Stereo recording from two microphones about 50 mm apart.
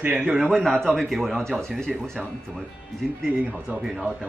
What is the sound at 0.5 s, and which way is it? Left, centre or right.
Speech, centre.